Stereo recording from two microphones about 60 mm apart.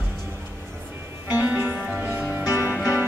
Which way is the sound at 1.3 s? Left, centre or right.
Right.